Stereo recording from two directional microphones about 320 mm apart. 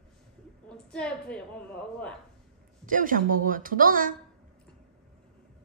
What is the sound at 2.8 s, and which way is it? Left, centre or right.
A woman's voice, right.